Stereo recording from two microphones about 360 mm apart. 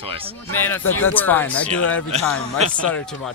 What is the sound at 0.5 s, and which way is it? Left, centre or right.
A man's voice, centre.